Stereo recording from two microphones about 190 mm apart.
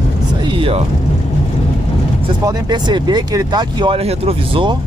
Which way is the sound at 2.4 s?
20° right (ahead or behind).